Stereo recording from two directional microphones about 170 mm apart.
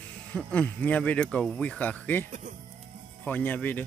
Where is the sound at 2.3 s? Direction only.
45° right (ahead or behind).